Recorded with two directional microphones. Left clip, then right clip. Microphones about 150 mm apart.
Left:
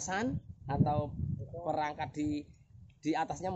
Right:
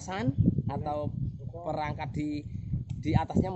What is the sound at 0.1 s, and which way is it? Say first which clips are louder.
Speech: right 5 dB; 20° right (ahead or behind).